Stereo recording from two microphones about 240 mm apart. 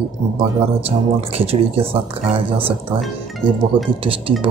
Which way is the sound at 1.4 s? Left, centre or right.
Right.